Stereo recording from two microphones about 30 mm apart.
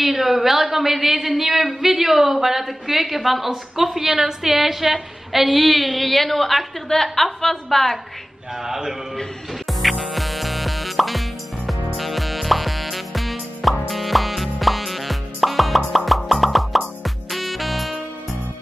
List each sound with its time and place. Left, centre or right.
0.0 s a woman's voice: centre
8.6 s a woman's voice: centre
9.7 s music: centre